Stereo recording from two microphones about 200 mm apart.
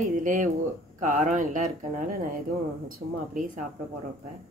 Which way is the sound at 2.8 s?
40° right (ahead or behind).